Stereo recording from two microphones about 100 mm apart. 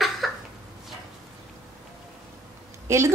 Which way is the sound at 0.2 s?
Centre (ahead or behind).